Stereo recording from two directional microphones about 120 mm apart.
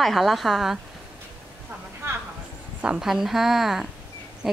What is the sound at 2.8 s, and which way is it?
A woman's voice, 5° right (ahead or behind).